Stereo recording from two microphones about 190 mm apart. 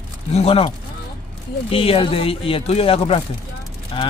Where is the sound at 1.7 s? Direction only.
30° left (ahead or behind).